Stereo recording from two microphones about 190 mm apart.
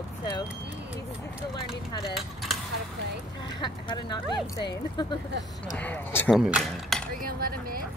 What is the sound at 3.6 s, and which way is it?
Speech, 25° left (ahead or behind).